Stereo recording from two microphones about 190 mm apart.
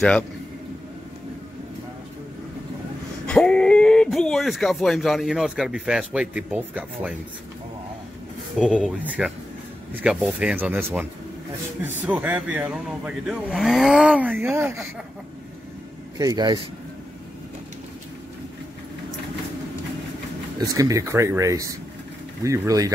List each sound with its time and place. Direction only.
3.3 s speech: 5° left (ahead or behind)
8.5 s speech: centre (ahead or behind)
16.2 s a man's voice: 20° right (ahead or behind)
20.6 s speech: 20° right (ahead or behind)